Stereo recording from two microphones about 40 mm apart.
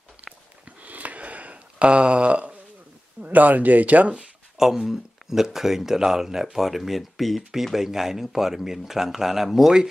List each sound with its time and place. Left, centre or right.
0.2 s a sound: right
3.3 s speech: right
4.6 s speech: centre